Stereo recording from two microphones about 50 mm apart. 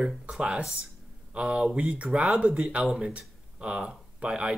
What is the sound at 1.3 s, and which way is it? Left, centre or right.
Speech, centre.